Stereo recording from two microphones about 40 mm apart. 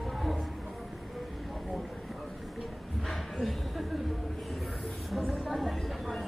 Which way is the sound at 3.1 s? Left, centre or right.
Centre.